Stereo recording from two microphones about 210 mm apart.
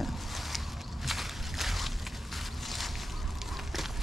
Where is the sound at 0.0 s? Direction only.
Centre (ahead or behind).